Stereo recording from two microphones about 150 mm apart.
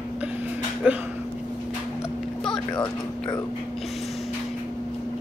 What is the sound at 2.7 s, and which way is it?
Speech, 30° left (ahead or behind).